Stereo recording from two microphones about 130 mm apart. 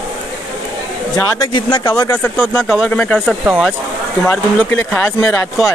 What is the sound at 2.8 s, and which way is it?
Speech, 10° left (ahead or behind).